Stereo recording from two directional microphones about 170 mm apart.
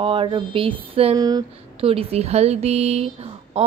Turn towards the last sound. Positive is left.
turn(degrees=-35)  # may be behind; listen again after turning